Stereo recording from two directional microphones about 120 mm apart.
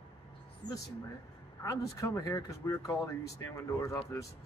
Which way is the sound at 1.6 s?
25° left (ahead or behind).